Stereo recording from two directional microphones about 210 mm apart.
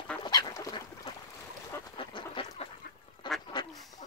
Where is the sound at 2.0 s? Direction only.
25° left (ahead or behind).